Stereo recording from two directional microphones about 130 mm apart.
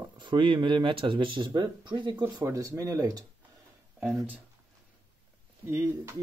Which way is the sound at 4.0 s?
15° right (ahead or behind).